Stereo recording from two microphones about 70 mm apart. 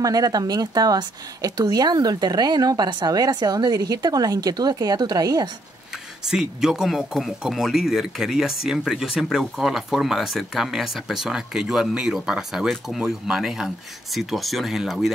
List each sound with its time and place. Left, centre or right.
0.0 s a woman's voice: right
6.2 s speech: centre